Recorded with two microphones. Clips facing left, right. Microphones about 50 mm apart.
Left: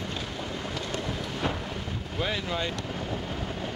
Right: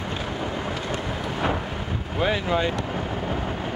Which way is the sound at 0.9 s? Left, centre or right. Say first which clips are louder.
Right 4 dB; right.